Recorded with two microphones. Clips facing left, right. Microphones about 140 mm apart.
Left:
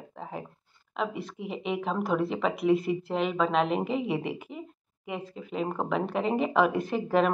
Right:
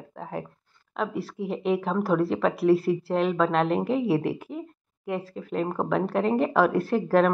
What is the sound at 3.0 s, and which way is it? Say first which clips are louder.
Speech: right 4 dB; 5° right (ahead or behind).